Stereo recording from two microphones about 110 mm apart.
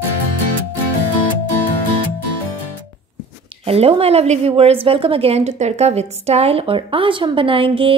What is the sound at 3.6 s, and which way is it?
A woman's voice, 65° right (ahead or behind).